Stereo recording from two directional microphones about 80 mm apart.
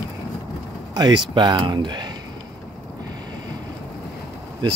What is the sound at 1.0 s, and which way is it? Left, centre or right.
Speech, right.